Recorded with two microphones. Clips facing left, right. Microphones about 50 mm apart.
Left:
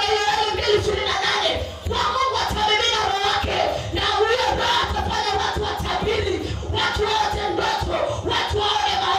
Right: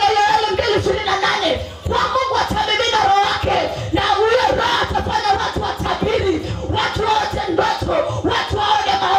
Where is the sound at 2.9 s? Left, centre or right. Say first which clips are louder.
Right 6 dB; right.